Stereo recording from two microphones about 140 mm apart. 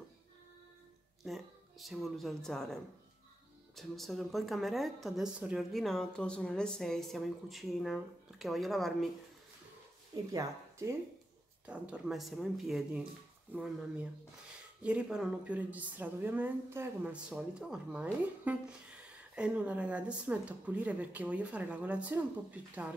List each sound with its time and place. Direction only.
1.2 s a woman's voice: centre (ahead or behind)
10.3 s speech: 20° right (ahead or behind)
11.6 s a woman's voice: 10° right (ahead or behind)